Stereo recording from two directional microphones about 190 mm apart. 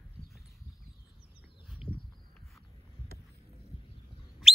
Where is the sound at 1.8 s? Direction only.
25° left (ahead or behind).